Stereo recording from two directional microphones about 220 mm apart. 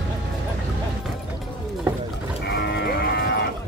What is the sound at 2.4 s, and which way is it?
Livestock, 45° left (ahead or behind).